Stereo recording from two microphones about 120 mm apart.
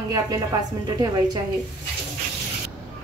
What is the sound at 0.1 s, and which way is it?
A woman's voice, 30° right (ahead or behind).